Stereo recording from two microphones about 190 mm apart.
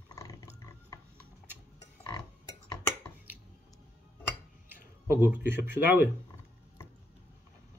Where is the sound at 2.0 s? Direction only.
20° left (ahead or behind).